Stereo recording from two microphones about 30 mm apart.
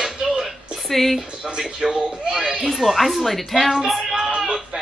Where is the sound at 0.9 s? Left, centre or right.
Centre.